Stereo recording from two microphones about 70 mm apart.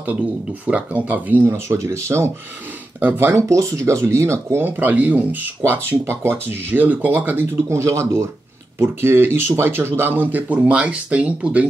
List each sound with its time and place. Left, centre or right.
0.0 s speech: centre
1.5 s speech: right
3.0 s speech: right
4.6 s speech: right
7.7 s speech: right; by 11.6 s centre